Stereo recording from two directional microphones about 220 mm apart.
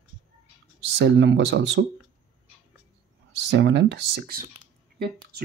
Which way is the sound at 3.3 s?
50° right (ahead or behind).